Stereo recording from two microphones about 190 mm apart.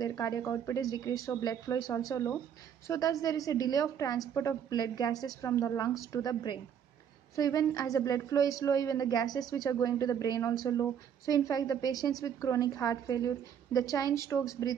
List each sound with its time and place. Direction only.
0.0 s a woman's voice: 20° left (ahead or behind)